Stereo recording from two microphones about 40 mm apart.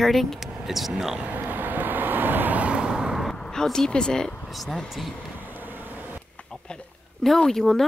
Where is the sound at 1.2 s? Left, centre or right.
Right.